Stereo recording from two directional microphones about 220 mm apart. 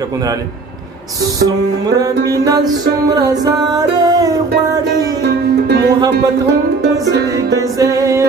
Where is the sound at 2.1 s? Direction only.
50° right (ahead or behind).